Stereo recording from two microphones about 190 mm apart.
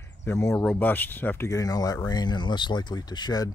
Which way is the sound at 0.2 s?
15° left (ahead or behind).